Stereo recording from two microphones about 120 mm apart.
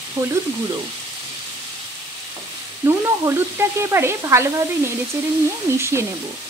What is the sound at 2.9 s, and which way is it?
Speech, 20° right (ahead or behind).